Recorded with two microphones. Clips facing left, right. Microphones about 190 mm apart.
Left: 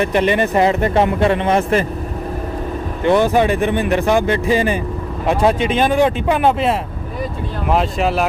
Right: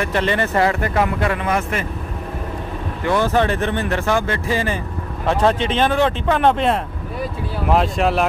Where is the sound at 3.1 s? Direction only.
15° left (ahead or behind).